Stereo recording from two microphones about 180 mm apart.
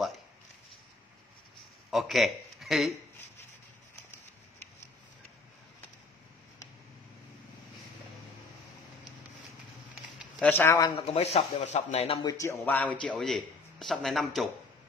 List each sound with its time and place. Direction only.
1.9 s speech: centre (ahead or behind)
10.4 s speech: 10° left (ahead or behind)
11.0 s speech: 35° left (ahead or behind)
12.2 s speech: 15° left (ahead or behind); by 14.5 s centre (ahead or behind)